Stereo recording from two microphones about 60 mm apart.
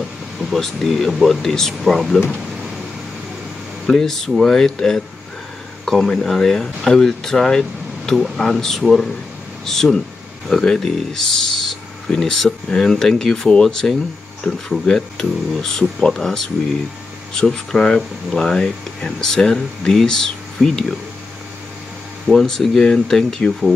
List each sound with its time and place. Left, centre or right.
0.5 s speech: centre
3.8 s speech: centre
22.3 s speech: centre